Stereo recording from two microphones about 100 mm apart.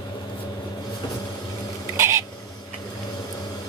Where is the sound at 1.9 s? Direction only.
30° right (ahead or behind).